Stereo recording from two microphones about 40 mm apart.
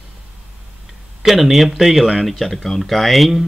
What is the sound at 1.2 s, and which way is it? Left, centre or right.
Speech, centre.